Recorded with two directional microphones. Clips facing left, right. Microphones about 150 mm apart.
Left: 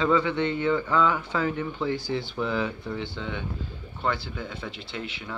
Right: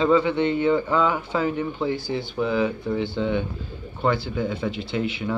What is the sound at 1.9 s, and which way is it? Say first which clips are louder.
Speech: right 3 dB; 5° right (ahead or behind).